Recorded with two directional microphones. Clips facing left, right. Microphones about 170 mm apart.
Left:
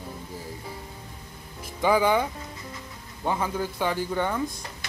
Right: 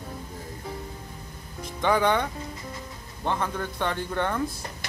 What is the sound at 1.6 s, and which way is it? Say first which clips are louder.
Speech: left 1 dB; 5° left (ahead or behind).